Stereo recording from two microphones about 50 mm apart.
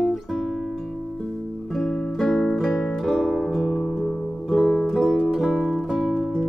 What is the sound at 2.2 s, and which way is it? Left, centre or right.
Music, centre.